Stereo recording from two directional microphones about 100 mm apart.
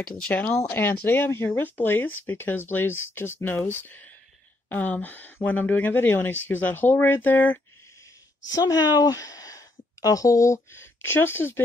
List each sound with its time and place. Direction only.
0.3 s speech: 25° left (ahead or behind)
8.5 s speech: 40° left (ahead or behind); by 11.6 s 25° left (ahead or behind)